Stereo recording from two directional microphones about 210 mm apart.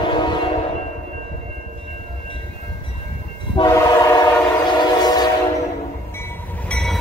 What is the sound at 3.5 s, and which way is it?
Train, 15° left (ahead or behind).